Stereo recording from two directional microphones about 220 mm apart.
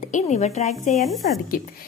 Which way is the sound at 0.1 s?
30° left (ahead or behind).